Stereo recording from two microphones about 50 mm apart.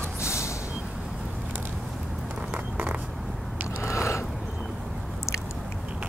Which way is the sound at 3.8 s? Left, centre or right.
Left.